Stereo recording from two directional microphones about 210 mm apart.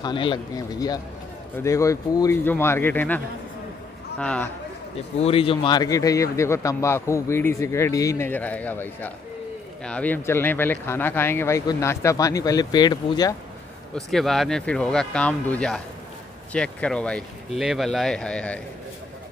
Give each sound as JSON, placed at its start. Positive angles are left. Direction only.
{"t": 0.0, "sound": "a man's voice", "side_deg": 20}
{"t": 4.2, "sound": "speech", "side_deg": 5}
{"t": 5.2, "sound": "a man's voice", "side_deg": 25}
{"t": 13.9, "sound": "speech", "side_deg": 0}